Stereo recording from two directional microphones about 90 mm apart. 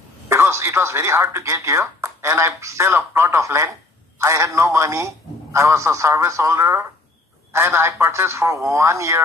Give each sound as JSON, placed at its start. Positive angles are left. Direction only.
{"t": 0.3, "sound": "speech", "side_deg": -30}